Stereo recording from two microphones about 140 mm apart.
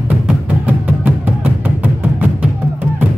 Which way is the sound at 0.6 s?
10° right (ahead or behind).